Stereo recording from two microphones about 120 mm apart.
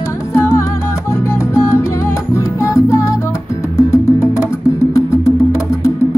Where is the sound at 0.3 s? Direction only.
20° left (ahead or behind).